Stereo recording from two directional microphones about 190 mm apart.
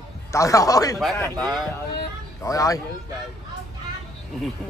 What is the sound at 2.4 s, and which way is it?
Speech, 20° left (ahead or behind).